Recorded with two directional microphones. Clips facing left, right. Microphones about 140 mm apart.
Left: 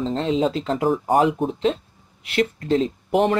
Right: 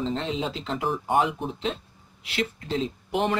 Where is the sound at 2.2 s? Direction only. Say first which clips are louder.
Left 8 dB; 50° left (ahead or behind).